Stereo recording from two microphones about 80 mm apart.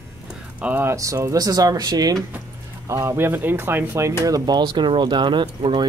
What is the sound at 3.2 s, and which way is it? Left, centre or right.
Speech, right.